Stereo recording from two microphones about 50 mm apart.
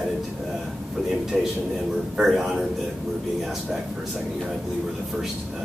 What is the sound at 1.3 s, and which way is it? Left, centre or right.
Speech, centre.